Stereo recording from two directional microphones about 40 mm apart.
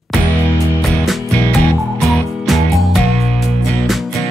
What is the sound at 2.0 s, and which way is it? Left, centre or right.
Music, centre.